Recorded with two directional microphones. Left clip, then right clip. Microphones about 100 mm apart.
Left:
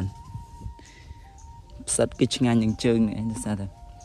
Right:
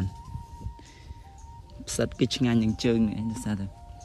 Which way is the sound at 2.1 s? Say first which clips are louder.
Left 3 dB; 15° right (ahead or behind).